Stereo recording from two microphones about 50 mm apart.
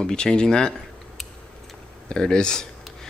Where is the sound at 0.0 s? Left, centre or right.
Centre.